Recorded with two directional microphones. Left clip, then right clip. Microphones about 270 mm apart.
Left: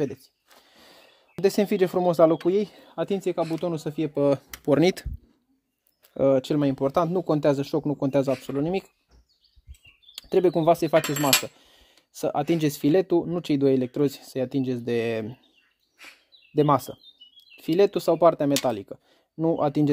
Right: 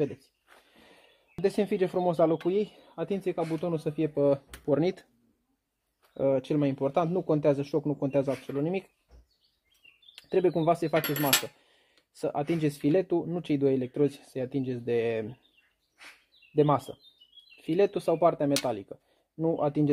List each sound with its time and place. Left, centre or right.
0.7 s a sound: left
1.4 s speech: left
6.1 s speech: left
10.1 s speech: left
16.5 s speech: left